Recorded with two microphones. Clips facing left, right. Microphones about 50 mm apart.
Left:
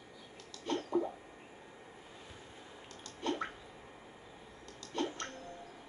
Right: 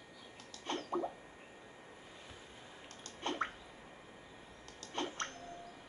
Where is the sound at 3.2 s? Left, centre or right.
Right.